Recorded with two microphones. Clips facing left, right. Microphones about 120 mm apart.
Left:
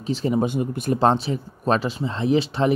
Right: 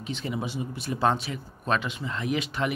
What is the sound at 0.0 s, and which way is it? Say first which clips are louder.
Speech: left 10 dB; 35° left (ahead or behind).